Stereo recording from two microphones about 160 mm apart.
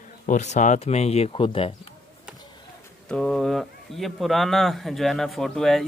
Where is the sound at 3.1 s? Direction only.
Centre (ahead or behind).